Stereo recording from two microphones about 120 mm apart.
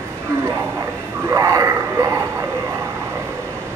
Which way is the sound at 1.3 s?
25° right (ahead or behind).